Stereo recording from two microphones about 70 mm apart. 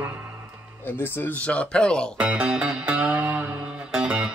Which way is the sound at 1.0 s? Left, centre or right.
Left.